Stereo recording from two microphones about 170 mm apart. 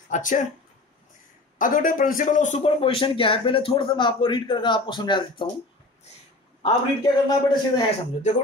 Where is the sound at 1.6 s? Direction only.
50° left (ahead or behind).